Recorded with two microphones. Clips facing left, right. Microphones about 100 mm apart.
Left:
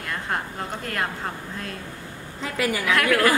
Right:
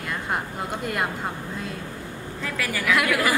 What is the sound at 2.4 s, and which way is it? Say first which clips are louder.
Speech: left 4 dB; 20° left (ahead or behind).